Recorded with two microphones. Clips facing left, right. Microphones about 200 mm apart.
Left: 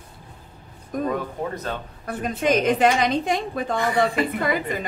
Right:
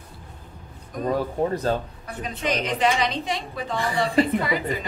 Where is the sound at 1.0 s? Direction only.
30° right (ahead or behind).